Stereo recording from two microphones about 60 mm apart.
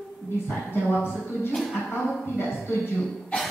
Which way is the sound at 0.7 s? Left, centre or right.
Left.